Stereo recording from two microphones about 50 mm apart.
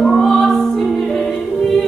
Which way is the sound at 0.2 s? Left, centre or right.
Centre.